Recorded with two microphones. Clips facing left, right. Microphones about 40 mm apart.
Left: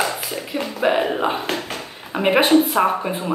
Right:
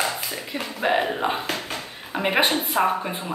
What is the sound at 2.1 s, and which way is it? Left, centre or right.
Speech, centre.